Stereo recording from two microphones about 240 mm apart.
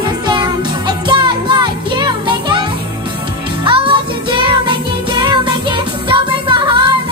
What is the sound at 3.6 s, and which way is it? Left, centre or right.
Music, right.